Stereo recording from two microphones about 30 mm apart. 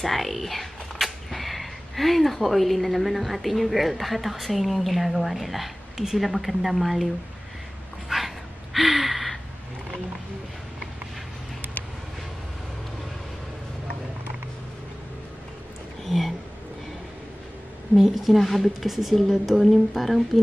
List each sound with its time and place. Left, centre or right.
0.0 s speech: centre
8.1 s dog: centre
8.7 s gasp: centre
16.0 s a sound: centre
17.9 s a woman's voice: centre
19.6 s a woman's voice: centre